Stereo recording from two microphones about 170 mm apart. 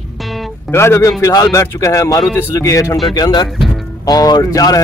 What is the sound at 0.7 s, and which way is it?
A man's voice, 15° left (ahead or behind).